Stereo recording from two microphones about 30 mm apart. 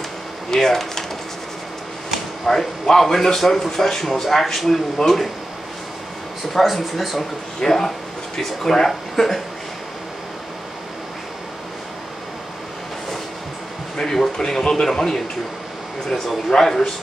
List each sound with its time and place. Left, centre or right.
0.5 s speech: centre
2.4 s speech: centre
6.6 s speech: centre
7.6 s speech: centre
8.4 s speech: centre
14.0 s speech: centre